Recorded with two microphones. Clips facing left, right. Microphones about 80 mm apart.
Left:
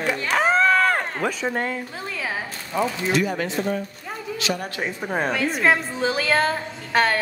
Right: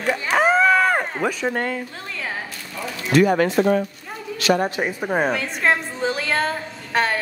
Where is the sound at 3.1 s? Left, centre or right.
Right.